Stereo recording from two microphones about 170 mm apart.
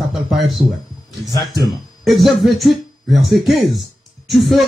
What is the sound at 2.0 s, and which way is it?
Speech, centre (ahead or behind).